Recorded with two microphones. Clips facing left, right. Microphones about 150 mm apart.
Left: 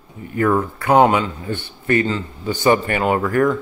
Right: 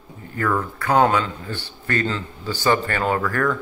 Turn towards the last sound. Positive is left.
turn(degrees=20)  # may be behind; listen again after turning